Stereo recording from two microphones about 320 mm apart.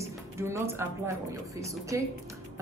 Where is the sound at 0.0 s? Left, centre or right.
Centre.